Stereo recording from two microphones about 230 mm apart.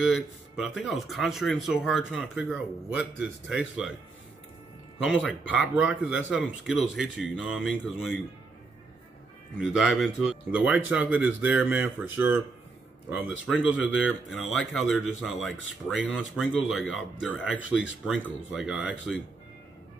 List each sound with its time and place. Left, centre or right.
0.0 s speech: centre
4.9 s speech: centre
9.6 s speech: centre
13.7 s speech: centre
17.6 s speech: left
18.0 s speech: centre